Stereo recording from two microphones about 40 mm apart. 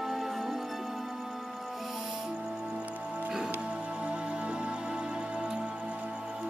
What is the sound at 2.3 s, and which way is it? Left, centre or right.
Music, right.